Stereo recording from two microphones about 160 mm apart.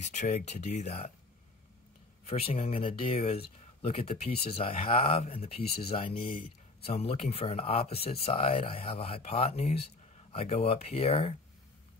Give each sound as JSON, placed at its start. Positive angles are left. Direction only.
{"t": 0.0, "sound": "speech", "side_deg": 45}
{"t": 2.2, "sound": "speech", "side_deg": 40}